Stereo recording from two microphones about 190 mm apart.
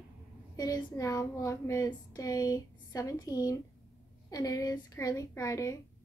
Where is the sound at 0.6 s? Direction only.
20° left (ahead or behind).